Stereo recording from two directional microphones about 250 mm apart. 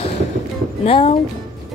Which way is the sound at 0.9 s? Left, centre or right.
Left.